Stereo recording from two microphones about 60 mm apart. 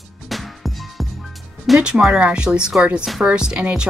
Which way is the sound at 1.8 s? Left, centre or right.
Centre.